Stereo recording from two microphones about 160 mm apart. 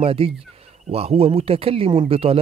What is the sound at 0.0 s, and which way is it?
Speech, 35° right (ahead or behind).